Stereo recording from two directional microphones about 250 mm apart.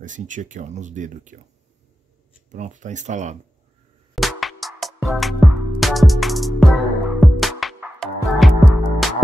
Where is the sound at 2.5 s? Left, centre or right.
Right.